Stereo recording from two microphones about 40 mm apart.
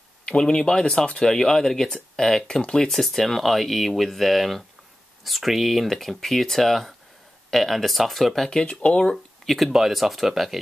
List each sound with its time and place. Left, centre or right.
0.3 s speech: centre
2.9 s speech: centre
8.8 s speech: left
9.1 s speech: centre